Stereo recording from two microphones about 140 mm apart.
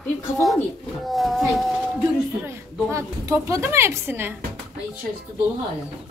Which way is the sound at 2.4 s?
20° right (ahead or behind).